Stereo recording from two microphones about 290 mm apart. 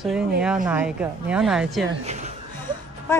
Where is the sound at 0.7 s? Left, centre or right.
Centre.